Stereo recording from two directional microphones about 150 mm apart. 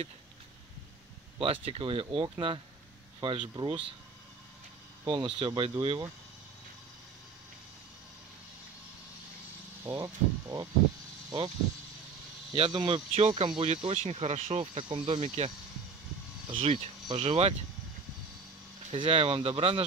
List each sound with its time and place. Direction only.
1.4 s speech: 40° right (ahead or behind)
5.0 s speech: 30° right (ahead or behind)
9.8 s speech: 20° right (ahead or behind)
12.7 s speech: 35° right (ahead or behind)
13.9 s speech: 45° right (ahead or behind)
16.5 s speech: 45° right (ahead or behind)
18.9 s speech: 40° right (ahead or behind)